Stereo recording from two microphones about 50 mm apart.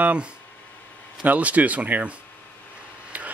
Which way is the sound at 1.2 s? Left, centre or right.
Right.